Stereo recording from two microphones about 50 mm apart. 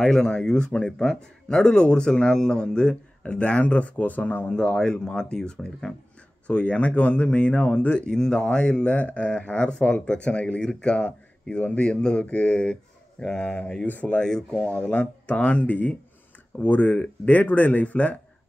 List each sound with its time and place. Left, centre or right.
0.0 s a man's voice: centre; by 4.6 s left
4.6 s a man's voice: centre
14.1 s a man's voice: centre